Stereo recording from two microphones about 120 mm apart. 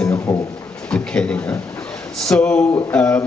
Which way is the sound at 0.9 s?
10° left (ahead or behind).